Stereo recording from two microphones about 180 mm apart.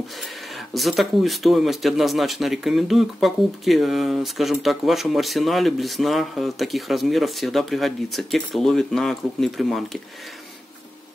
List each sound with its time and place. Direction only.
0.7 s speech: centre (ahead or behind)